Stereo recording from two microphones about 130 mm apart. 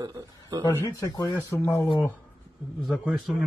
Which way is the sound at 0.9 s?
30° left (ahead or behind).